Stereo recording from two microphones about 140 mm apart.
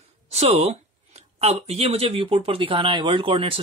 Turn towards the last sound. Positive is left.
turn(degrees=-40)  # may be behind; listen again after turning